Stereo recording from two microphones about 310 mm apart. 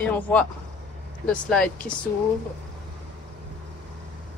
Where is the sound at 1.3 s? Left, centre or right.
Centre.